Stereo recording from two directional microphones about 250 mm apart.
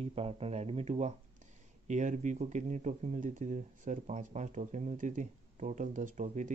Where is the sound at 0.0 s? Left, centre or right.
Right.